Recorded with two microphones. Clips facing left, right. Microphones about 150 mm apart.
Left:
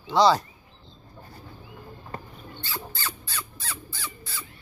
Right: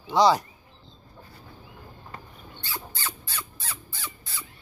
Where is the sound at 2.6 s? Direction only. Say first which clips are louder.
Left 1 dB; 20° right (ahead or behind).